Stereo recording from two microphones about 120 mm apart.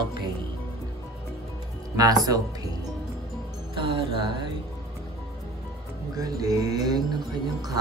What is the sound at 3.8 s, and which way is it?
Music, 45° right (ahead or behind).